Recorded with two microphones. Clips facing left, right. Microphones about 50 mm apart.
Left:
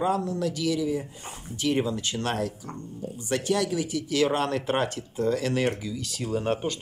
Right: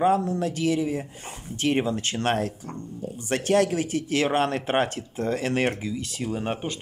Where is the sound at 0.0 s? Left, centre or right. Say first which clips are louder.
Right 4 dB; right.